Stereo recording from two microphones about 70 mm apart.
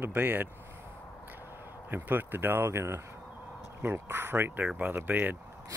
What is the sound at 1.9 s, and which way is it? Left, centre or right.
Speech, right.